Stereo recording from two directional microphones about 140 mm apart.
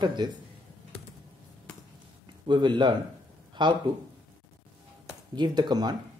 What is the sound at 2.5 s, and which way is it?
Speech, 35° right (ahead or behind).